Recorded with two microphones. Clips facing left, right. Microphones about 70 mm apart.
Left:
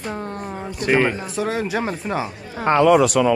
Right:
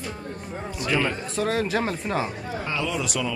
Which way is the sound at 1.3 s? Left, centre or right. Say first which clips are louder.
Left 2 dB; centre.